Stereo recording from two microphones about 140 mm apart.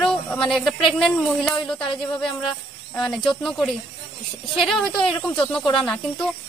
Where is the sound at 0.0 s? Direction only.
5° left (ahead or behind).